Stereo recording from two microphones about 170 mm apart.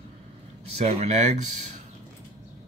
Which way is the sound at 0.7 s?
40° right (ahead or behind).